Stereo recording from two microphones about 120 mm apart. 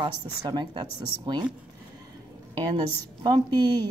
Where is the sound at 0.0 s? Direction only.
40° right (ahead or behind).